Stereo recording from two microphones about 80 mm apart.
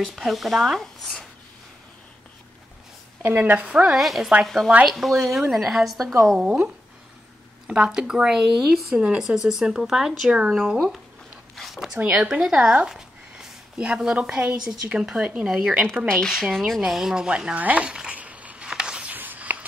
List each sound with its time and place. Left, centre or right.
0.0 s speech: centre
3.2 s a woman's voice: right; by 6.6 s centre
7.6 s a woman's voice: centre
11.5 s zipper: centre
12.0 s speech: centre
16.1 s speech: centre
19.1 s walk: right